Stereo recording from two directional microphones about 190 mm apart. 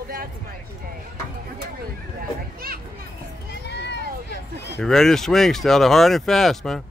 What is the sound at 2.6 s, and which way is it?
Children playing, 50° right (ahead or behind).